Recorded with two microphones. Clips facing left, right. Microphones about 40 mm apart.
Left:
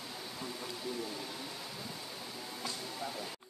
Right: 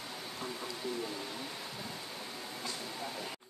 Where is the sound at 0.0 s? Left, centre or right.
Centre.